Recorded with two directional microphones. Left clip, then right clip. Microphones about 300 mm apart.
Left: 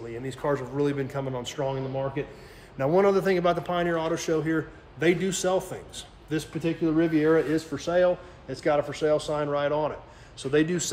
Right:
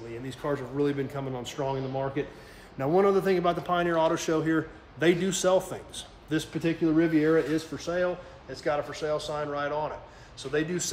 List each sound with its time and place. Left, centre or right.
0.3 s a man's voice: centre
7.5 s speech: centre
8.5 s a man's voice: left